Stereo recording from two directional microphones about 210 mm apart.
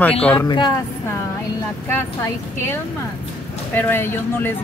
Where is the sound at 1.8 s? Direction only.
10° left (ahead or behind).